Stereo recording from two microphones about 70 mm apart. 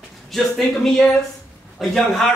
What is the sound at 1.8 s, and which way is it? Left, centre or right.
Speech, centre.